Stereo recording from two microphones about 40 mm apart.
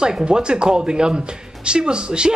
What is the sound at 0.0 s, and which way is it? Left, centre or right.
Speech, right.